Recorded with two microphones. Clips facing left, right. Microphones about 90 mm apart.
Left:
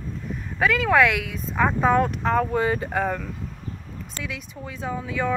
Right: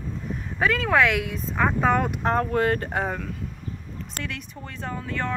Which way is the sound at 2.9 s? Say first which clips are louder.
Left 2 dB; 5° right (ahead or behind).